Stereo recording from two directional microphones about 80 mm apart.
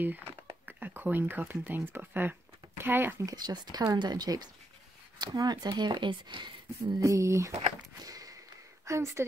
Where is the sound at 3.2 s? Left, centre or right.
Right.